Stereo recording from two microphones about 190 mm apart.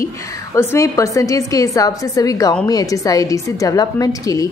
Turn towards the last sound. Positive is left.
turn(degrees=20)  # may be behind; listen again after turning